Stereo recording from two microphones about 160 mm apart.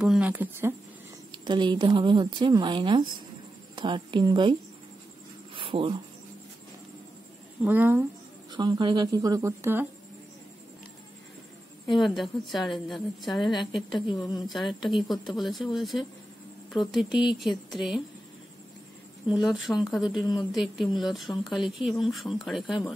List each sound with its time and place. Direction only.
0.0 s speech: 5° right (ahead or behind)
1.3 s speech: 30° right (ahead or behind)
5.6 s a sound: 35° right (ahead or behind)
7.6 s speech: 10° right (ahead or behind)
8.5 s speech: 30° right (ahead or behind)
11.9 s speech: centre (ahead or behind)
19.2 s speech: 5° right (ahead or behind)